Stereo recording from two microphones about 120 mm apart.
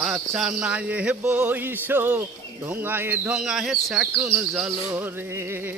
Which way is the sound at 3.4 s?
5° right (ahead or behind).